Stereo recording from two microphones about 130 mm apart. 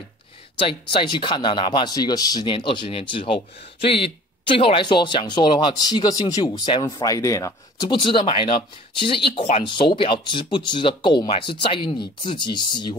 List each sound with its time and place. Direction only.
0.6 s speech: 40° left (ahead or behind); by 7.5 s 25° left (ahead or behind)
7.8 s speech: 35° left (ahead or behind)